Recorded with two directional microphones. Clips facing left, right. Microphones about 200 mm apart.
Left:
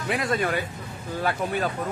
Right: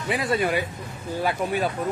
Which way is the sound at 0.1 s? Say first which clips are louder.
Right 2 dB; 5° right (ahead or behind).